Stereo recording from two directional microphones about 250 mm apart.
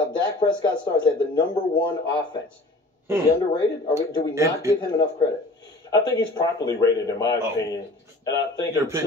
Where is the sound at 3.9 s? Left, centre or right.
Centre.